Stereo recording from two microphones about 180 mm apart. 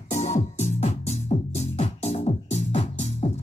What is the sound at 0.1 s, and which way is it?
Music, 40° left (ahead or behind).